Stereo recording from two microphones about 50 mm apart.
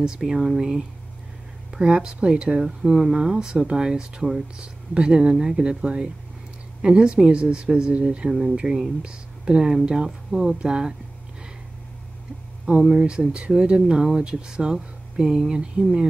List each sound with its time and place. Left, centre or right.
0.0 s speech: centre
12.6 s speech: centre